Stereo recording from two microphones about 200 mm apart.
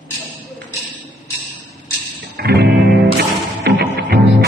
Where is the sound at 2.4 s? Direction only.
55° right (ahead or behind).